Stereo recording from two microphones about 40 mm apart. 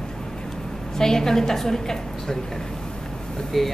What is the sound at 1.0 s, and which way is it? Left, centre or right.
Speech, centre.